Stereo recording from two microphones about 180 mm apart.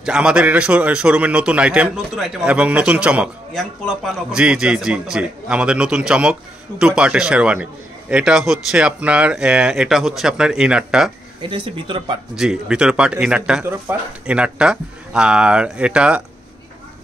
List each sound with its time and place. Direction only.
0.0 s a man's voice: 5° right (ahead or behind)
11.4 s speech: 25° right (ahead or behind)
12.4 s speech: 5° right (ahead or behind)